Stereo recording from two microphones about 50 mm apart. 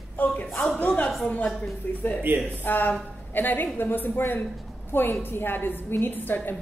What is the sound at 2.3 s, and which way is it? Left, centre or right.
Speech, right.